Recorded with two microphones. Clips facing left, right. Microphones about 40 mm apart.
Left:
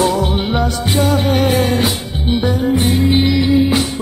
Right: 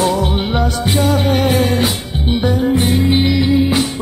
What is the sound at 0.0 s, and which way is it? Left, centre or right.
Music, centre.